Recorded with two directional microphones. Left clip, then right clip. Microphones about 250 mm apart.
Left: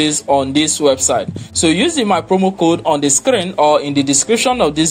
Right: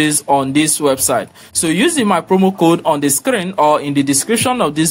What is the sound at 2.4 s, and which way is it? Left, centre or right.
Speech, right.